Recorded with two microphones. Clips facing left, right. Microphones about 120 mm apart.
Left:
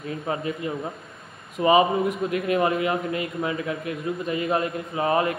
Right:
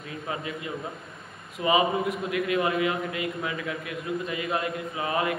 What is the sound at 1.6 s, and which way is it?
Speech, 35° left (ahead or behind).